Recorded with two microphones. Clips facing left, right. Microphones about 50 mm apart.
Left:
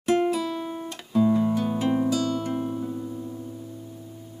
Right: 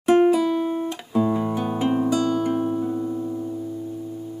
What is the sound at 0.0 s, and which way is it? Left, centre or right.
Music, centre.